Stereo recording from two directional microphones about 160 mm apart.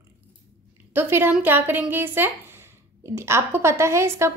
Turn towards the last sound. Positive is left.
turn(degrees=-15)  # may be behind; listen again after turning